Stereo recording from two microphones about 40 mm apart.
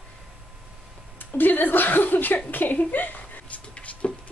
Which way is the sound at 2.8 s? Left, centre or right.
Left.